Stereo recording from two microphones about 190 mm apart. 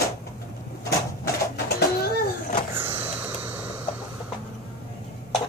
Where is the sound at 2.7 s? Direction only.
10° right (ahead or behind).